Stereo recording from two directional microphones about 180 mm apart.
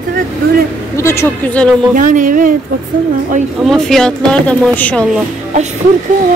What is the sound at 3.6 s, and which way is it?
Speech, centre (ahead or behind).